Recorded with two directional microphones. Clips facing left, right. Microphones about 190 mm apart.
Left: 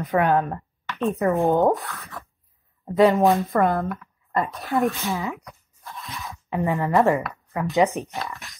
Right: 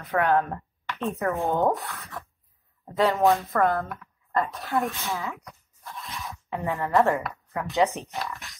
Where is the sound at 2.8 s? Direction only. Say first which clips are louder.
Left 5 dB; 15° left (ahead or behind).